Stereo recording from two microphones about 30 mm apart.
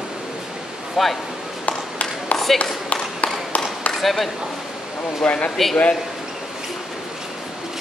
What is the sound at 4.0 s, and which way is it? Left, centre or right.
Speech, centre.